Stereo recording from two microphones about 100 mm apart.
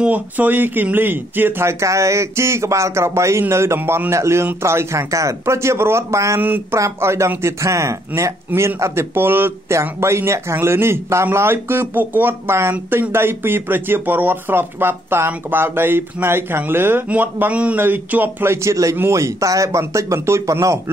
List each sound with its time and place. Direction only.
0.0 s speech: 15° right (ahead or behind)
6.4 s speech: 20° right (ahead or behind)